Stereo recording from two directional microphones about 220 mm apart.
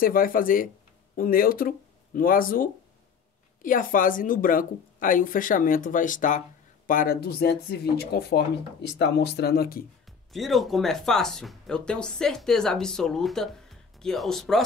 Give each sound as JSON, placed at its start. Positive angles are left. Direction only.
{"t": 0.0, "sound": "speech", "side_deg": 40}
{"t": 10.0, "sound": "speech", "side_deg": 0}